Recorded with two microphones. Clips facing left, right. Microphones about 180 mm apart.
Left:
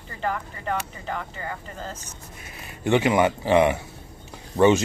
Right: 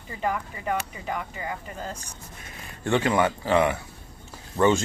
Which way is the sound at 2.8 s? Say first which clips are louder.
Left 3 dB; 15° left (ahead or behind).